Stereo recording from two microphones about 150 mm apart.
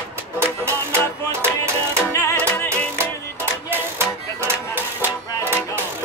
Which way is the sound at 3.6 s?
15° right (ahead or behind).